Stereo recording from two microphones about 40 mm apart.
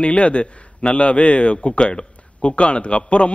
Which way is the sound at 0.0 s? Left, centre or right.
Left.